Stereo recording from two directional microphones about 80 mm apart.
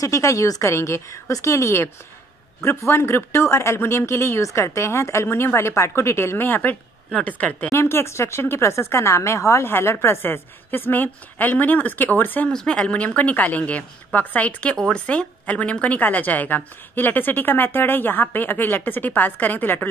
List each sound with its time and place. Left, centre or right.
0.0 s speech: left
2.9 s a woman's voice: left
7.7 s speech: left
12.4 s a woman's voice: centre